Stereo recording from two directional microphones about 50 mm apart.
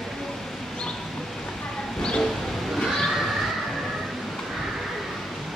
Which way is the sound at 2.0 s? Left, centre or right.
Centre.